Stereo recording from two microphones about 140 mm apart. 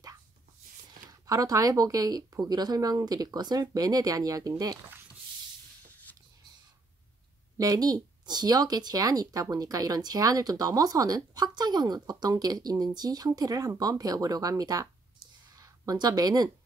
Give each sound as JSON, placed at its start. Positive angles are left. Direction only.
{"t": 1.2, "sound": "speech", "side_deg": -25}
{"t": 7.5, "sound": "speech", "side_deg": -25}